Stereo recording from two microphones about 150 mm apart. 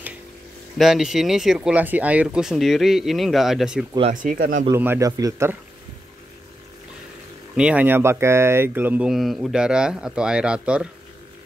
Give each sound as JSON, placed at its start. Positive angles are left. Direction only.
{"t": 0.7, "sound": "speech", "side_deg": 0}
{"t": 4.1, "sound": "speech", "side_deg": -60}
{"t": 4.6, "sound": "speech", "side_deg": -15}
{"t": 7.5, "sound": "speech", "side_deg": -10}